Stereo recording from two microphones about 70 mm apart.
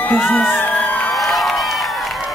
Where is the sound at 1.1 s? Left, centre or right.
Centre.